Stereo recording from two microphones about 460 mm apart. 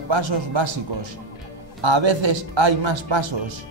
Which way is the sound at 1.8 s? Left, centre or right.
Right.